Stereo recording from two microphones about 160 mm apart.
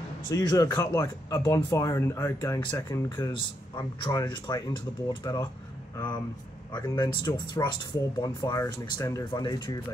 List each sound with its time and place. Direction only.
0.3 s speech: 25° left (ahead or behind)
6.7 s speech: 25° left (ahead or behind)